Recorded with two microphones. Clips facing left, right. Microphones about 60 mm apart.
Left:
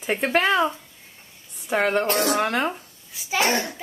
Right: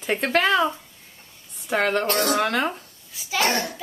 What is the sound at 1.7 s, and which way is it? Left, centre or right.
A child's voice, centre.